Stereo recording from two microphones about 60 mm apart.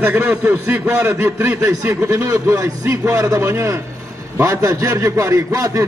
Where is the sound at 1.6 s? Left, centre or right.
Right.